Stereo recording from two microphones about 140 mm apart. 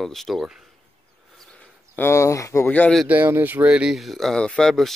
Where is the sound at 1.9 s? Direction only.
20° left (ahead or behind).